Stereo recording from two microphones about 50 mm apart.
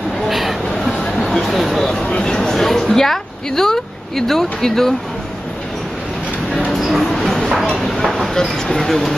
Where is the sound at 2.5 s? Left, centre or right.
Centre.